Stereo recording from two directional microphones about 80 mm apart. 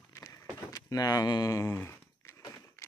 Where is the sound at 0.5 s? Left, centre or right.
Left.